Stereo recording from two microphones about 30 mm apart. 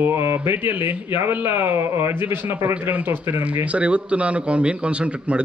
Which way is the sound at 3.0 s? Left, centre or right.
Right.